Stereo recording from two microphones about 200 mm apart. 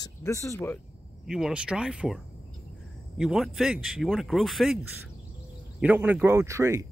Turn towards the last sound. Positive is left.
turn(degrees=-15)  # may be behind; listen again after turning